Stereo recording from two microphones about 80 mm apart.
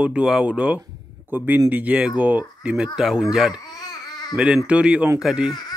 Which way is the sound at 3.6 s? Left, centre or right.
Left.